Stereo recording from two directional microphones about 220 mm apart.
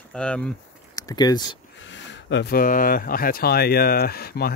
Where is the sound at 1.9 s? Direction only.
55° left (ahead or behind).